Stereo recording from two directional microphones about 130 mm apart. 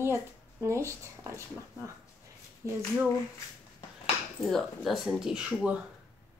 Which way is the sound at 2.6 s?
20° right (ahead or behind).